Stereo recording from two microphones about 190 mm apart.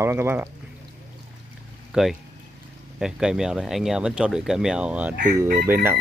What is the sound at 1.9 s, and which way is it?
Speech, centre (ahead or behind).